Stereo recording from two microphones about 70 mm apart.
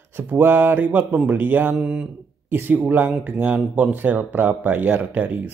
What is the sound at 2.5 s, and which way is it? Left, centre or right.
Speech, right.